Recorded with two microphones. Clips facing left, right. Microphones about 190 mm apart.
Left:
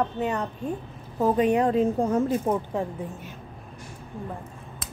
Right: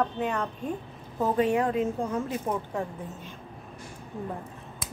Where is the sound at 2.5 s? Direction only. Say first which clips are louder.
Left 5 dB; 25° left (ahead or behind).